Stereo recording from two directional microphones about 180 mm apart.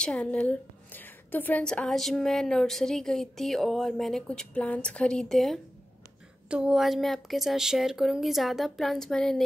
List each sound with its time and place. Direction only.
0.0 s a woman's voice: 5° left (ahead or behind)